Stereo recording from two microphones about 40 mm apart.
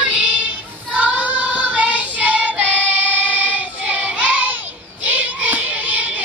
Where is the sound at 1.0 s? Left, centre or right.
Right.